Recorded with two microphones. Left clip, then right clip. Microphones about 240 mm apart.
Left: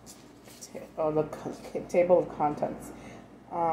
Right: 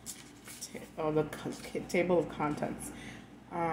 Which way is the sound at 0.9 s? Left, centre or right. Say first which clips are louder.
Left 4 dB; right.